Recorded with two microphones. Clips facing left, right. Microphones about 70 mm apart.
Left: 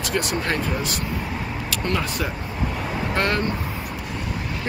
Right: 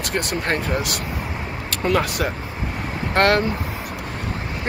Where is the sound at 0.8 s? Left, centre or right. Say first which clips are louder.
Even; right.